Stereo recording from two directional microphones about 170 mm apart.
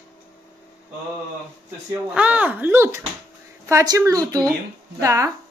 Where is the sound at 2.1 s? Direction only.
5° right (ahead or behind).